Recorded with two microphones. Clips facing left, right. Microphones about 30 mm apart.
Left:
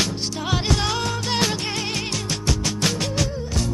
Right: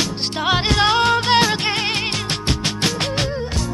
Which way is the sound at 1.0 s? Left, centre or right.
Right.